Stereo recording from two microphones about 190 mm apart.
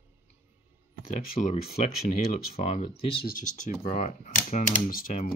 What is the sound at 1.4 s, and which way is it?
Speech, 40° left (ahead or behind).